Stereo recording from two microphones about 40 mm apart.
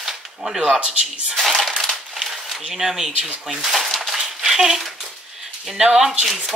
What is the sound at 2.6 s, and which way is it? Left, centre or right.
Speech, centre.